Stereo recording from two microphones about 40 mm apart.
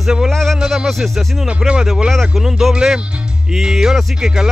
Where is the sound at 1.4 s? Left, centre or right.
Right.